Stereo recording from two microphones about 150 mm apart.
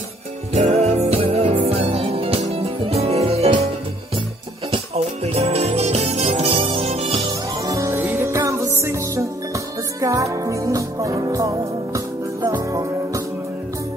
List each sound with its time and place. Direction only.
0.5 s music: 45° right (ahead or behind)
4.6 s jingle bell: 40° right (ahead or behind)
7.2 s music: 20° right (ahead or behind)